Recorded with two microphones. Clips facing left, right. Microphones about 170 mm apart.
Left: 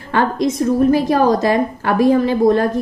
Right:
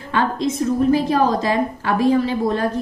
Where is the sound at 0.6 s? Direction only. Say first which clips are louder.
Left 3 dB; 45° left (ahead or behind).